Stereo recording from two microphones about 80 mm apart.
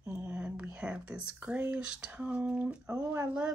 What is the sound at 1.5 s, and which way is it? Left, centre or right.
Speech, centre.